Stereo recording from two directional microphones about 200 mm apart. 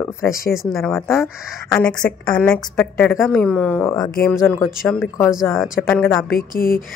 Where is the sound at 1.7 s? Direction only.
15° left (ahead or behind).